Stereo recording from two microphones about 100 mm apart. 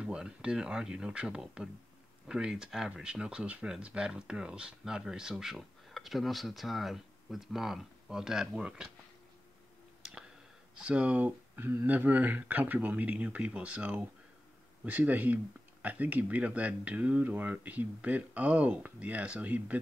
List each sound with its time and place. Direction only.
0.0 s speech: 10° right (ahead or behind)
10.8 s speech: 10° right (ahead or behind)